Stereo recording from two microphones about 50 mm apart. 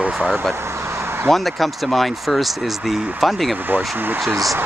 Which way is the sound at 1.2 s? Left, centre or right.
Centre.